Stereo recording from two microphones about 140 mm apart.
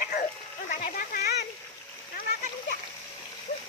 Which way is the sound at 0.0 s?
75° left (ahead or behind).